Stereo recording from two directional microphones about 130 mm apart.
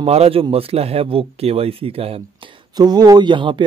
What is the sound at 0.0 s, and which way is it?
Speech, 50° right (ahead or behind).